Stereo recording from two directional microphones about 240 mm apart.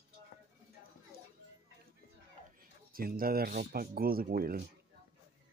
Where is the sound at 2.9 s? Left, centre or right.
Right.